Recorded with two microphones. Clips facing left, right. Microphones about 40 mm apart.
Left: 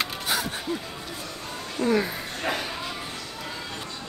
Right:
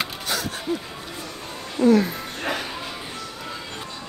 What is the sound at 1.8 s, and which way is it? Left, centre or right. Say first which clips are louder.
Speech: right 7 dB; right.